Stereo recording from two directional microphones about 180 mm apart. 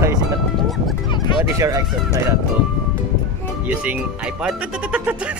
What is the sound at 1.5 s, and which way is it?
Speech, 20° right (ahead or behind).